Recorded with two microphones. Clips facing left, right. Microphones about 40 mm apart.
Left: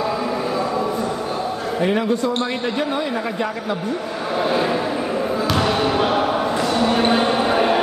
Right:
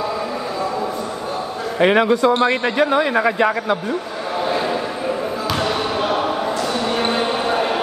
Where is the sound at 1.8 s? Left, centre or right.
Right.